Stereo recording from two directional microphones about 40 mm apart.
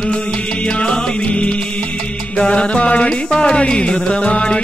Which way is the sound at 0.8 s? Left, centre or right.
Left.